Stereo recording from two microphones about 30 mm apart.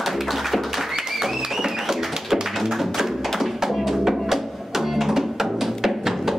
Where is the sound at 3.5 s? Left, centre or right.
Centre.